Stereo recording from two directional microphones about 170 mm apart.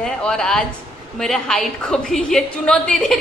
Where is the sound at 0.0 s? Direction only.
5° left (ahead or behind).